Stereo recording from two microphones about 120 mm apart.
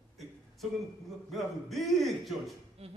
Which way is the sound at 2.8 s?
60° right (ahead or behind).